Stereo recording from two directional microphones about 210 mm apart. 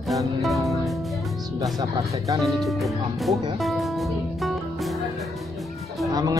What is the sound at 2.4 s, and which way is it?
Speech, centre (ahead or behind).